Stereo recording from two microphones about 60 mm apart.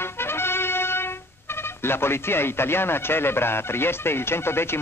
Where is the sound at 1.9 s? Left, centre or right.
Left.